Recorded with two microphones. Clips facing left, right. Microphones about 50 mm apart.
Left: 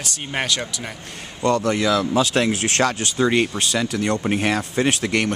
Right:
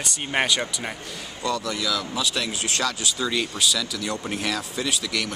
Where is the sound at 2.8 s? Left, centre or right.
Left.